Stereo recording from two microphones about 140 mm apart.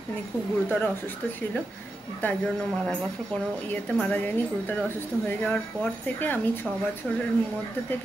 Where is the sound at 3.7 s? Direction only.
10° left (ahead or behind).